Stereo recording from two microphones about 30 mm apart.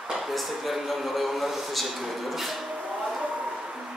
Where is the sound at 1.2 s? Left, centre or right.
Centre.